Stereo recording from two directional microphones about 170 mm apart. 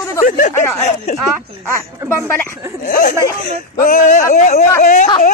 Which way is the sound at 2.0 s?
15° left (ahead or behind).